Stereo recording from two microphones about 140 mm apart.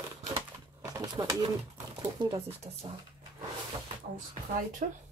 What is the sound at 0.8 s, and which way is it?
Pigeon, 25° right (ahead or behind).